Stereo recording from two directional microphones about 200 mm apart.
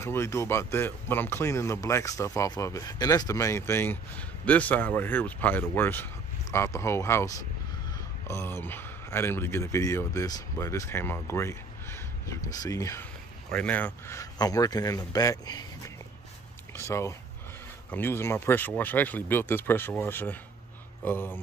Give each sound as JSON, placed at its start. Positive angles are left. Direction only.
{"t": 0.0, "sound": "a man's voice", "side_deg": 15}
{"t": 16.7, "sound": "a man's voice", "side_deg": 15}